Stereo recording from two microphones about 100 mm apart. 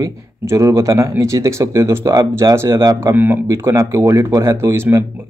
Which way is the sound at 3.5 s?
30° right (ahead or behind).